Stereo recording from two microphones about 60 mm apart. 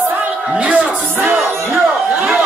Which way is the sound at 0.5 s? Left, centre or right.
Centre.